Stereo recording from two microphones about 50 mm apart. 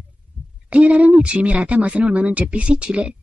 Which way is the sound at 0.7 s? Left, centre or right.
Right.